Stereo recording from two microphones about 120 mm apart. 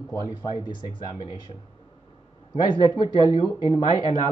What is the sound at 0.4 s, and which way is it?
Speech, 40° left (ahead or behind).